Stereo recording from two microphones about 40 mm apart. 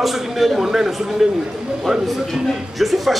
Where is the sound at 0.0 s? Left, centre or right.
Centre.